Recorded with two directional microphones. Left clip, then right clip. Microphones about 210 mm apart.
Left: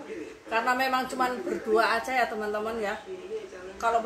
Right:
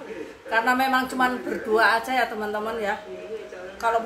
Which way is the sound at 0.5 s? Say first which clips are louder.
Right 5 dB; 15° right (ahead or behind).